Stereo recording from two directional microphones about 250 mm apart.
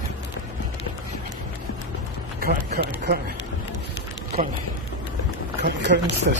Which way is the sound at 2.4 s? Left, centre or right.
Right.